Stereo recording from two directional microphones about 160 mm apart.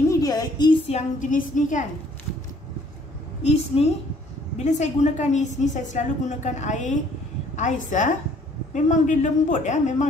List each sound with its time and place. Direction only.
0.1 s a sound: 25° left (ahead or behind)
0.8 s a woman's voice: 50° left (ahead or behind)
3.4 s a woman's voice: 40° left (ahead or behind)